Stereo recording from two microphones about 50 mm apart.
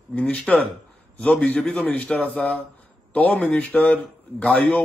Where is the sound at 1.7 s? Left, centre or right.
Left.